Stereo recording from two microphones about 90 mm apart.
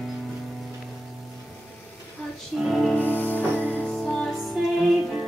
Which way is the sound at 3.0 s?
20° left (ahead or behind).